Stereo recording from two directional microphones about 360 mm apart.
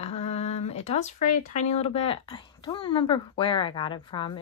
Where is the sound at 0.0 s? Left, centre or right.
Centre.